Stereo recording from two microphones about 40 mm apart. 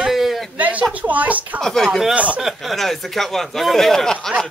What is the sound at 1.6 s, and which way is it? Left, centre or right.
Speech, centre.